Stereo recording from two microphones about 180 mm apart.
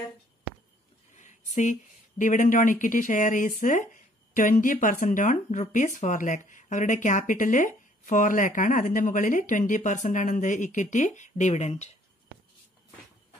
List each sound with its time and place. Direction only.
1.1 s speech: 40° left (ahead or behind)